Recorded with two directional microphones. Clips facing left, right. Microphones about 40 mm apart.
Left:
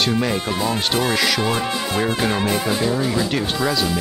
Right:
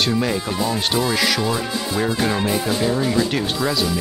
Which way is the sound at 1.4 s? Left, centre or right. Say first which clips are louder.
Left 1 dB; left.